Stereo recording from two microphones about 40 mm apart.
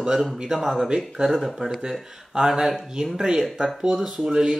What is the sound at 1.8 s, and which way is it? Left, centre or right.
Speech, centre.